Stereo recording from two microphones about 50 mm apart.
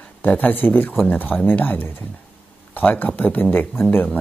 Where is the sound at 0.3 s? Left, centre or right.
Left.